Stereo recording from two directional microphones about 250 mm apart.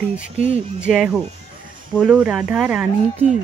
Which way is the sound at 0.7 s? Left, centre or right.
Centre.